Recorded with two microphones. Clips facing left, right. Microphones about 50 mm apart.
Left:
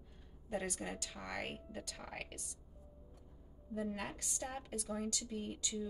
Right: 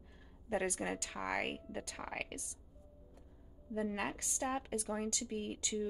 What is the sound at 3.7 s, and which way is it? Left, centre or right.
A woman's voice, right.